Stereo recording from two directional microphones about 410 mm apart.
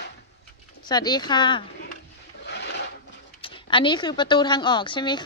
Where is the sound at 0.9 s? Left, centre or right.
Centre.